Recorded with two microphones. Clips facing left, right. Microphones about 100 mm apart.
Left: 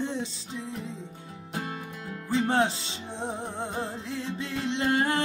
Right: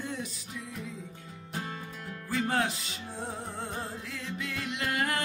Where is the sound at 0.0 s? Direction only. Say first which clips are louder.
Left 6 dB; 25° left (ahead or behind).